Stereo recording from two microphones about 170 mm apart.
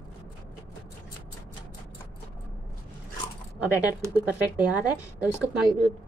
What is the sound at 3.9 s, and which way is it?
A woman's voice, 10° right (ahead or behind).